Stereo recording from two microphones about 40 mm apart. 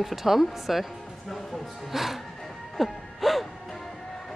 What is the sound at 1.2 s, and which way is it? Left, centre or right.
Music, centre.